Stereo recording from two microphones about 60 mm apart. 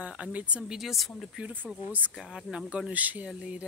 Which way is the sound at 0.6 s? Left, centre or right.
Centre.